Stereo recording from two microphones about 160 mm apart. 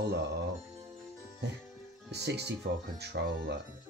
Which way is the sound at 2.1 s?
90° right.